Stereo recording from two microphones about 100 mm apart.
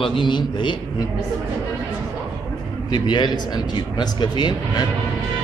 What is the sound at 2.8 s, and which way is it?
Speech, 50° left (ahead or behind).